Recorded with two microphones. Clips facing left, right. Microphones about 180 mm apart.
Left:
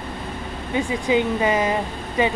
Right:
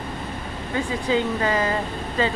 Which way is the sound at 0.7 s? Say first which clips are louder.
Left 2 dB; 20° left (ahead or behind).